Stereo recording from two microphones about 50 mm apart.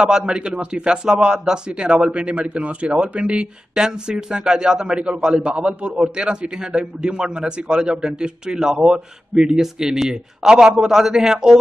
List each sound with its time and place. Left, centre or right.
0.3 s speech: right